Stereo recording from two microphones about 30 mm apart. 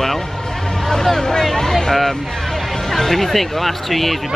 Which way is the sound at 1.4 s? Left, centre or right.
Centre.